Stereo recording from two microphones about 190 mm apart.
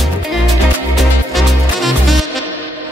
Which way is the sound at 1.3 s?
Centre (ahead or behind).